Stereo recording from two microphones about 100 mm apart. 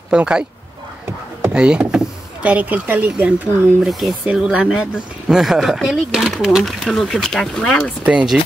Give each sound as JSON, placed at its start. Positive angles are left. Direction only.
{"t": 0.1, "sound": "speech", "side_deg": -10}
{"t": 1.5, "sound": "speech", "side_deg": -10}
{"t": 3.8, "sound": "speech", "side_deg": -5}
{"t": 8.0, "sound": "speech", "side_deg": -10}